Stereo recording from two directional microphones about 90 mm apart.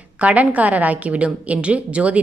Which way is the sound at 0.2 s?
15° right (ahead or behind).